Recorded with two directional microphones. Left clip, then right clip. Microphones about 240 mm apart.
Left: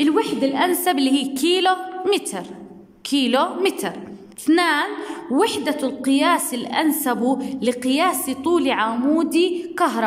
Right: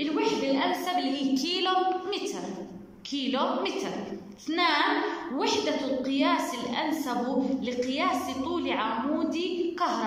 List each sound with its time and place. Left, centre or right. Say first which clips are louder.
0.0 s a woman's voice: left 8 dB; left